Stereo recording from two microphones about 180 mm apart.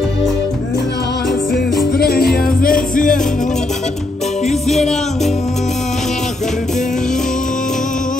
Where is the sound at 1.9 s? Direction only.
60° left (ahead or behind).